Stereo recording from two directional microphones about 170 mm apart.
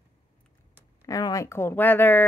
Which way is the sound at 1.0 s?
20° left (ahead or behind).